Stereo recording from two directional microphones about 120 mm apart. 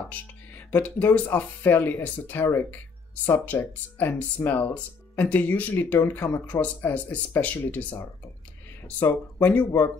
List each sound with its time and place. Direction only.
0.7 s speech: 15° left (ahead or behind)